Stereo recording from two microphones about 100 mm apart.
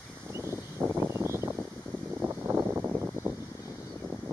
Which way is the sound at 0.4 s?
25° right (ahead or behind).